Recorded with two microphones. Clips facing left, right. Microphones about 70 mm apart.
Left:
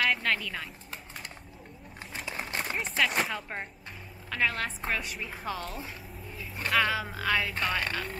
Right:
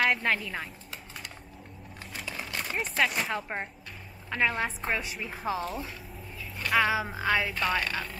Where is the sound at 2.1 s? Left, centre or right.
Left.